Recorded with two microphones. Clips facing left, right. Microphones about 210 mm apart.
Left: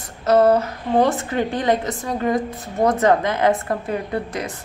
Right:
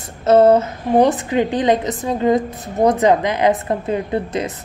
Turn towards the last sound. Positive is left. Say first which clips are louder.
# right 4 dB
turn(degrees=-20)  # may be behind; listen again after turning